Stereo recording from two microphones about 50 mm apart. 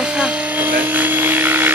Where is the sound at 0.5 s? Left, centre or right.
Right.